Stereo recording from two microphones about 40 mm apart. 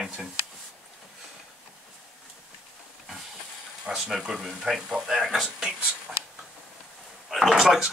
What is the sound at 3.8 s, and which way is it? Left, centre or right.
Speech, centre.